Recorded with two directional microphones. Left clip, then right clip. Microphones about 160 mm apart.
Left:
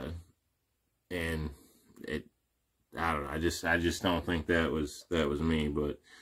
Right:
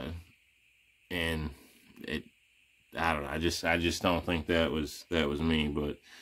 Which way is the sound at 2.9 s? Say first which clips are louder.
Right 2 dB; 5° right (ahead or behind).